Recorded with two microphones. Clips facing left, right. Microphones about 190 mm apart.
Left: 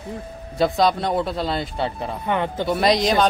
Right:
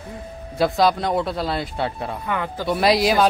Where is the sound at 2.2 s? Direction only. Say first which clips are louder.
Left 5 dB; 25° left (ahead or behind).